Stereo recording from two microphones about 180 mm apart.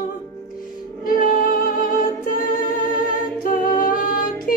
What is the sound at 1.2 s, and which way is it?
Music, 50° left (ahead or behind).